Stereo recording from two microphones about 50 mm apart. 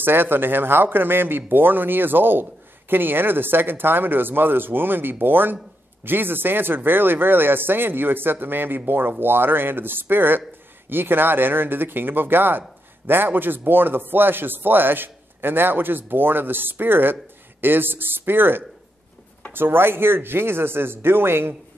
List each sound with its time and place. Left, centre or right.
0.0 s speech: right